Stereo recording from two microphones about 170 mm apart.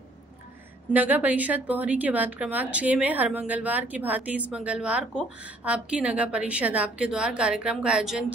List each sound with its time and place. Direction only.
0.8 s a woman's voice: 10° right (ahead or behind)